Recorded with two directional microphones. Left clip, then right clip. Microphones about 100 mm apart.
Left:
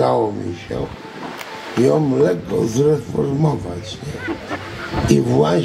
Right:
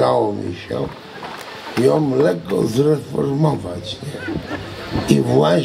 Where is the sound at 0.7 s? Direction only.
35° right (ahead or behind).